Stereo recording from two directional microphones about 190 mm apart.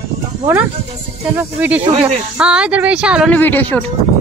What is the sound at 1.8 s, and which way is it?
Speech, 30° right (ahead or behind).